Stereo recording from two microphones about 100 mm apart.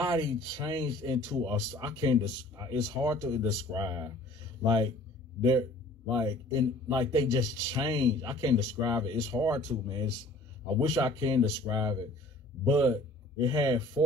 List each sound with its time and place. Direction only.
0.0 s speech: 45° right (ahead or behind)
5.4 s a man's voice: 45° right (ahead or behind)